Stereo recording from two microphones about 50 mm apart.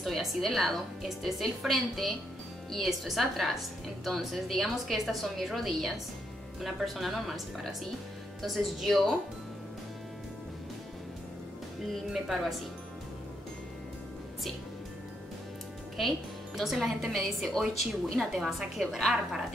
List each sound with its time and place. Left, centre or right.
0.0 s a woman's voice: centre
12.1 s a woman's voice: centre
16.0 s a woman's voice: centre